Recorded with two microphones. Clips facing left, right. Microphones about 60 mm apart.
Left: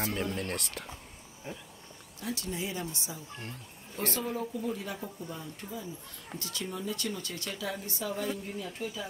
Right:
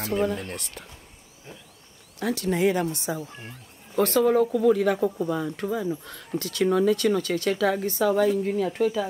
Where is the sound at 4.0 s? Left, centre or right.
Right.